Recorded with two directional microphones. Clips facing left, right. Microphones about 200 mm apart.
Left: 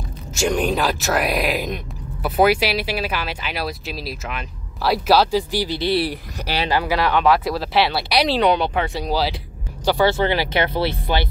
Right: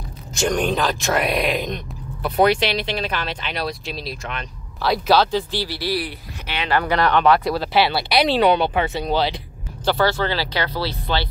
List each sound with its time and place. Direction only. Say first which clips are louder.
0.3 s speech: left 1 dB; 5° left (ahead or behind); by 6.0 s 20° left (ahead or behind)
6.0 s speech: left 6 dB; 35° left (ahead or behind)
6.7 s speech: right 2 dB; 5° left (ahead or behind)
9.8 s speech: left 2 dB; 15° left (ahead or behind)